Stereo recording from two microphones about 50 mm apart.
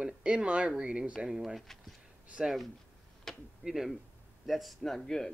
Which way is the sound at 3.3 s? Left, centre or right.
Centre.